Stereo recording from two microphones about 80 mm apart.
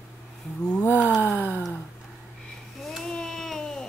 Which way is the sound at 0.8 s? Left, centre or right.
Right.